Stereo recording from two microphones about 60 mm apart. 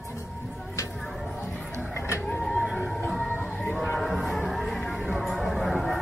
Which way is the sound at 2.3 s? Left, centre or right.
Centre.